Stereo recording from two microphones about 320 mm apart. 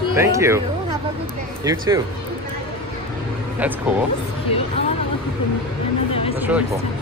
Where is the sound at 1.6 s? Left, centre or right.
Centre.